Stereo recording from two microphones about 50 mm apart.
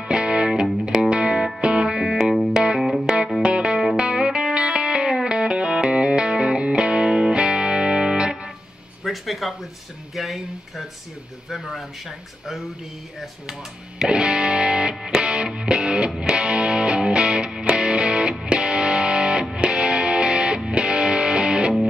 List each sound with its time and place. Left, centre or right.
0.0 s music: centre
2.8 s music: centre
3.4 s music: centre
9.0 s speech: centre
13.5 s music: centre